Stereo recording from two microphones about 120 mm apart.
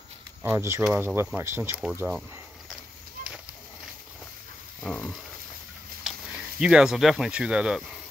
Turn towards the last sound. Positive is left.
turn(degrees=-5)  # may be behind; listen again after turning